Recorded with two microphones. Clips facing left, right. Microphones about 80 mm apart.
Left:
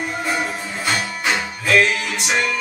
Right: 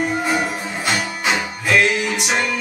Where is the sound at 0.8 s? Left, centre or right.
Centre.